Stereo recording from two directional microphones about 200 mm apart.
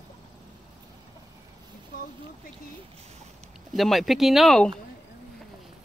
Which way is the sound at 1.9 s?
45° left (ahead or behind).